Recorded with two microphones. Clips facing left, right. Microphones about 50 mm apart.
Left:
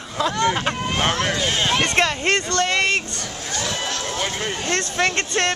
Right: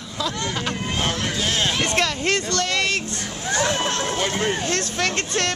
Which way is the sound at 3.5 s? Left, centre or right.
Right.